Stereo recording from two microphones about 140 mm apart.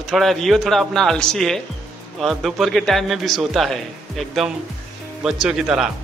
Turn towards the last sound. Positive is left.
turn(degrees=-5)  # may be behind; listen again after turning